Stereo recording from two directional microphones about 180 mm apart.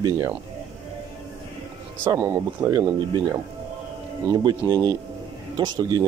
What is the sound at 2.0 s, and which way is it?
Speech, 15° right (ahead or behind).